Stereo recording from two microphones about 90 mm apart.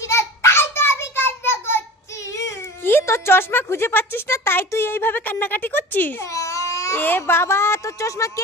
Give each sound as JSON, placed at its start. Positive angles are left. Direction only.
{"t": 0.0, "sound": "child singing", "side_deg": 30}
{"t": 2.3, "sound": "speech", "side_deg": 30}
{"t": 6.3, "sound": "baby cry", "side_deg": 35}
{"t": 7.0, "sound": "a woman's voice", "side_deg": 25}